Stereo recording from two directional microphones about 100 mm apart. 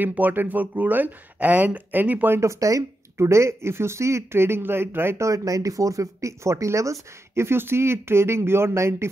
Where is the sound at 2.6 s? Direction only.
35° right (ahead or behind).